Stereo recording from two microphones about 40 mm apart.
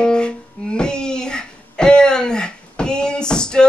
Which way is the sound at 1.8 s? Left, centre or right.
Centre.